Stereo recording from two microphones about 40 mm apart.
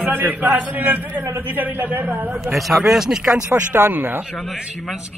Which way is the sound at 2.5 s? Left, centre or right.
Centre.